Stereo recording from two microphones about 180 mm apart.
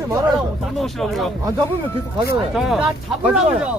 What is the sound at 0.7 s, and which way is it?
Speech, centre (ahead or behind).